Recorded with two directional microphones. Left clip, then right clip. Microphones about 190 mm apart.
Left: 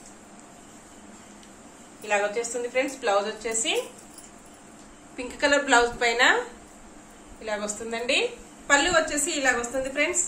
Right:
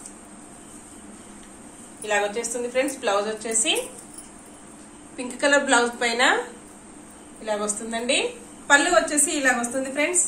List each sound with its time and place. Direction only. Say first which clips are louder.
2.0 s a woman's voice: right 1 dB; 35° left (ahead or behind)
5.1 s a woman's voice: right 3 dB; 50° left (ahead or behind)
7.4 s a woman's voice: right 3 dB; 50° left (ahead or behind)